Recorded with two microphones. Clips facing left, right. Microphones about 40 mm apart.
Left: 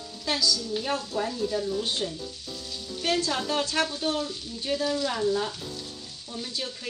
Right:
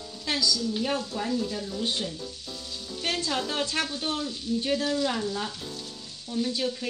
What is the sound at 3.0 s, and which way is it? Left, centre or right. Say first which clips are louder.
Speech: left 4 dB; right.